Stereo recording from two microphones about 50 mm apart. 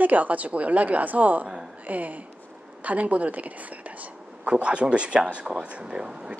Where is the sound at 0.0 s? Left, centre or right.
Right.